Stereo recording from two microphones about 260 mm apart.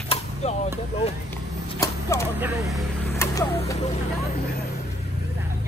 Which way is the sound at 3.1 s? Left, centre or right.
Centre.